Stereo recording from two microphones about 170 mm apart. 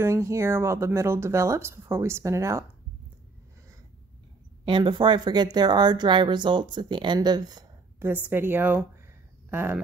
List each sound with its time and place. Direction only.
0.0 s speech: 15° right (ahead or behind)
4.6 s speech: 30° right (ahead or behind)
8.0 s speech: 10° right (ahead or behind)